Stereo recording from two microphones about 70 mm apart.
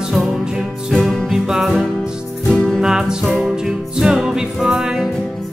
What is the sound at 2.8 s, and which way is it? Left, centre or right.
Music, centre.